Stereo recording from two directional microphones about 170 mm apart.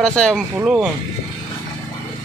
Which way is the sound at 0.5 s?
10° right (ahead or behind).